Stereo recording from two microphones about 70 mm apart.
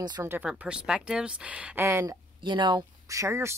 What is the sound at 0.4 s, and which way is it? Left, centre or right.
Speech, centre.